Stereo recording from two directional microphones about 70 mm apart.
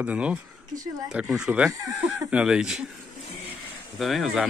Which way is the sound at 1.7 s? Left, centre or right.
Right.